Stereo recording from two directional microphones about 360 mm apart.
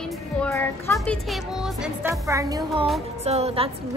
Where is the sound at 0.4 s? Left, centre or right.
Centre.